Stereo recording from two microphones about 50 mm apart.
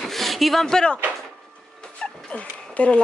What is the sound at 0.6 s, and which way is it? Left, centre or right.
Speech, centre.